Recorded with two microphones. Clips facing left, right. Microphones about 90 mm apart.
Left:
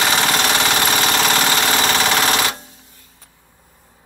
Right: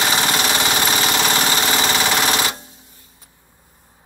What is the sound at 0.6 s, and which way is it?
Jackhammer, 5° right (ahead or behind).